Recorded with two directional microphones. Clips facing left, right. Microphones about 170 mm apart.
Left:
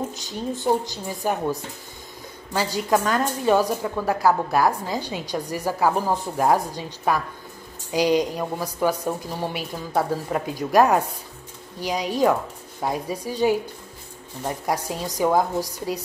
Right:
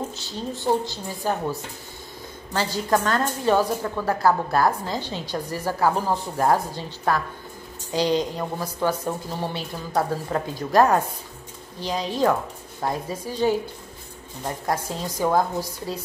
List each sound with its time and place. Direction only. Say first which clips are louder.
0.3 s a woman's voice: left 1 dB; 15° left (ahead or behind)